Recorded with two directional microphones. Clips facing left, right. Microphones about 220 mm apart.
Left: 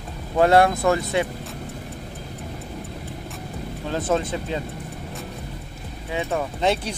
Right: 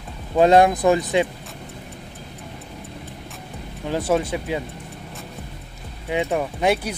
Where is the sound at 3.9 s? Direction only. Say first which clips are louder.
Right 2 dB; 10° right (ahead or behind).